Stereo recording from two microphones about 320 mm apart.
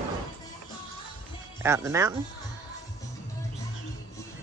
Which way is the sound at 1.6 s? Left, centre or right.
Centre.